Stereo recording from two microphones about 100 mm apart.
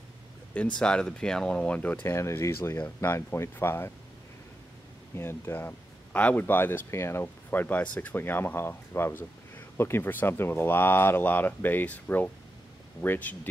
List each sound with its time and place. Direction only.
0.7 s speech: 10° left (ahead or behind)
2.0 s speech: 25° left (ahead or behind)
5.1 s speech: 25° left (ahead or behind)